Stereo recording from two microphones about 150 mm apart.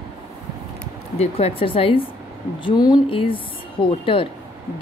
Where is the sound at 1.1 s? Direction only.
45° left (ahead or behind).